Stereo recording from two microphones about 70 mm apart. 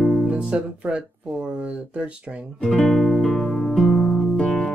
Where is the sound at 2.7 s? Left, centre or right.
Centre.